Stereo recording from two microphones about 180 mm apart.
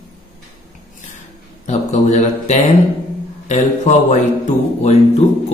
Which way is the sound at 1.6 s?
40° left (ahead or behind).